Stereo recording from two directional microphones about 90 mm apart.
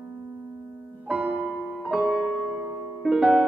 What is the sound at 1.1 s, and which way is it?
Music, 15° right (ahead or behind).